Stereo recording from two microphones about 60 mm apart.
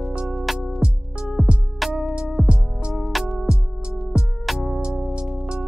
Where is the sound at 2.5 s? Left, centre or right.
Centre.